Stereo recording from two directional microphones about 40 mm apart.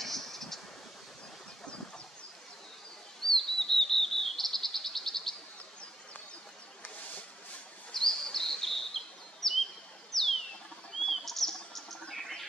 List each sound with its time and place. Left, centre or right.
0.0 s a sound: centre
3.2 s chirp: centre
7.9 s bird vocalization: centre
10.1 s a sound: centre
11.1 s chirp: centre
12.1 s frog: centre